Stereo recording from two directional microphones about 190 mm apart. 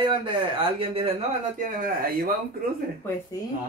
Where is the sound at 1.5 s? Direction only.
45° right (ahead or behind).